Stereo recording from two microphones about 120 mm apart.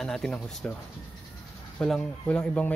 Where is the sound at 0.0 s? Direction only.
5° left (ahead or behind).